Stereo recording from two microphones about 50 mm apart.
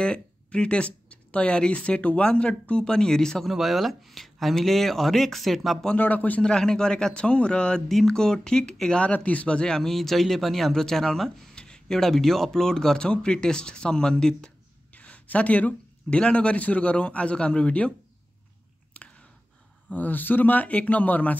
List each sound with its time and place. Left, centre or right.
0.0 s speech: centre
3.4 s speech: centre
5.9 s speech: left
6.4 s speech: centre
9.0 s speech: left
15.0 s speech: left
18.9 s whispering: left
19.9 s speech: left